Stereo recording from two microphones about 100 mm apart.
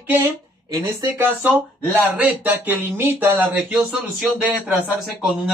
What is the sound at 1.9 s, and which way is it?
Speech, 15° right (ahead or behind).